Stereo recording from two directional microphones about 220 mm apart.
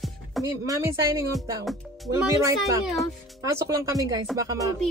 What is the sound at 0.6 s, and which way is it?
Speech, 15° right (ahead or behind).